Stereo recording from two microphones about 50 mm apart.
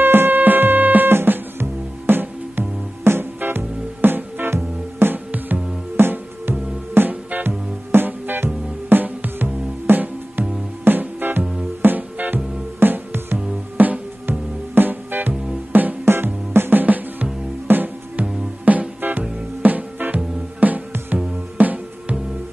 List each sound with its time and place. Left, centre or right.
0.0 s music: right
16.5 s music: right
16.8 s music: right